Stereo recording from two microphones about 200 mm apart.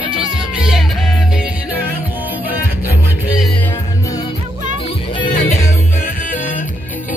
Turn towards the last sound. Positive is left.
turn(degrees=35)  # may be behind; listen again after turning